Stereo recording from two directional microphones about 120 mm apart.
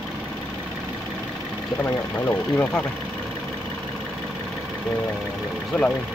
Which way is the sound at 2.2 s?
15° left (ahead or behind).